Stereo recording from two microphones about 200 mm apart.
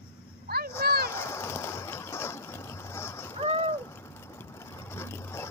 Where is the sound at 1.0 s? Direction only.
10° left (ahead or behind).